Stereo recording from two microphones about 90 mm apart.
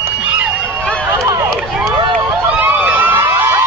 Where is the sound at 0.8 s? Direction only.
10° left (ahead or behind).